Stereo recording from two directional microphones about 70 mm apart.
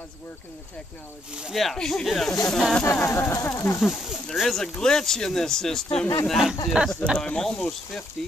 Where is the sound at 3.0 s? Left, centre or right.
Left.